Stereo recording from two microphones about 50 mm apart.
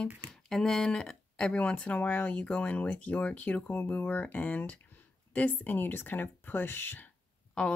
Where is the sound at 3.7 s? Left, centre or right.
Left.